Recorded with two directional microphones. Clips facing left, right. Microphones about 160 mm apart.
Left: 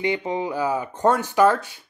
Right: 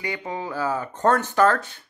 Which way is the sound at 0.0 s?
20° left (ahead or behind).